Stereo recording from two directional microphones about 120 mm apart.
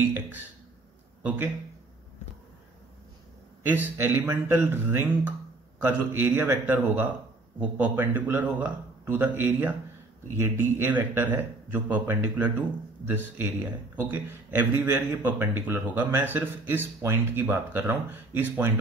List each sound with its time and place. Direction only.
0.0 s a man's voice: 15° right (ahead or behind)
3.6 s a man's voice: 15° right (ahead or behind)